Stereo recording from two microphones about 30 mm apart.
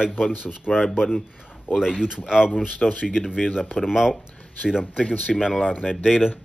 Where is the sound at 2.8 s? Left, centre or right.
Centre.